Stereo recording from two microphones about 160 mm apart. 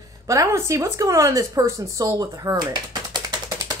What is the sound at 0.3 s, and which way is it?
Speech, 20° right (ahead or behind).